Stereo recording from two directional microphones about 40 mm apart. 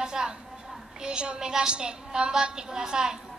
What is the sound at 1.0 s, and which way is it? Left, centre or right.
A woman's voice, right.